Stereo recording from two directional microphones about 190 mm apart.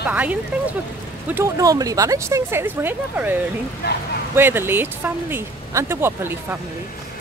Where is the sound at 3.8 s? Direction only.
60° left (ahead or behind).